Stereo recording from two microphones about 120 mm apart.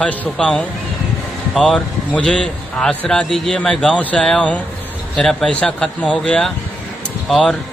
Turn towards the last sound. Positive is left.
turn(degrees=5)  # may be behind; listen again after turning